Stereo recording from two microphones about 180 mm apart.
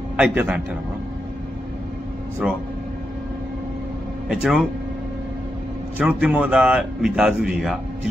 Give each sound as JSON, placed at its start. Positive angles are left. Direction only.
{"t": 0.2, "sound": "a man's voice", "side_deg": -10}
{"t": 2.4, "sound": "speech", "side_deg": -5}
{"t": 4.3, "sound": "speech", "side_deg": -5}
{"t": 5.9, "sound": "speech", "side_deg": -5}